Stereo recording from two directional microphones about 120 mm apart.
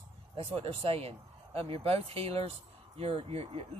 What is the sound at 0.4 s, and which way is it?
Speech, 50° right (ahead or behind).